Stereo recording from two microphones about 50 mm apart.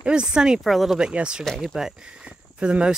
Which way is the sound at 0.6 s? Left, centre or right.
Centre.